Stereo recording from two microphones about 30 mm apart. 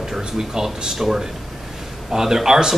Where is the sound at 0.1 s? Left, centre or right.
Centre.